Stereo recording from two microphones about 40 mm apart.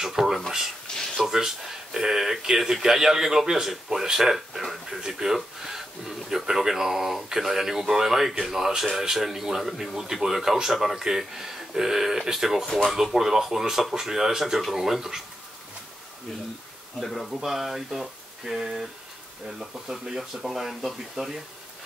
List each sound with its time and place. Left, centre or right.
0.2 s a man's voice: centre
0.9 s a sound: centre
1.3 s a man's voice: centre
17.0 s a man's voice: centre